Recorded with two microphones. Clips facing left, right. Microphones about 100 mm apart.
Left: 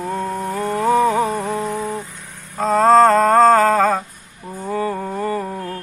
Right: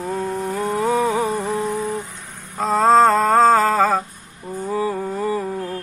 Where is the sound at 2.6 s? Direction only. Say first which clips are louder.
Left 2 dB; centre (ahead or behind).